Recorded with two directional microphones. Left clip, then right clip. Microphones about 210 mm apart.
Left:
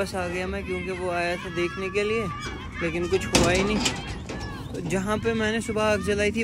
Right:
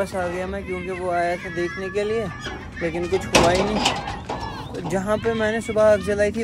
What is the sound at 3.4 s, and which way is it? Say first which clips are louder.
Speech: right 4 dB; centre (ahead or behind).